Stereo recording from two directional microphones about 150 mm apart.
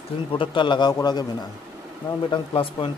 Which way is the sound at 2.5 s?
35° left (ahead or behind).